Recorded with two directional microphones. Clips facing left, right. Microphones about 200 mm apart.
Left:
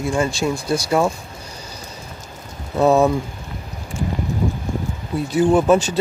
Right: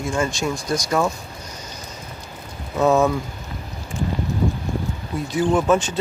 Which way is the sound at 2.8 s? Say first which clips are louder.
Left 2 dB; 15° left (ahead or behind).